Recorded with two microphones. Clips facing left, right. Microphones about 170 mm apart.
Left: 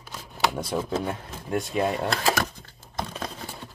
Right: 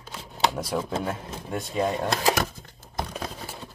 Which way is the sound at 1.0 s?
Centre (ahead or behind).